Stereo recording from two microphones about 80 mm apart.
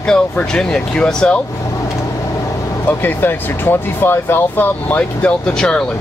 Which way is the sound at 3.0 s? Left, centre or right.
Left.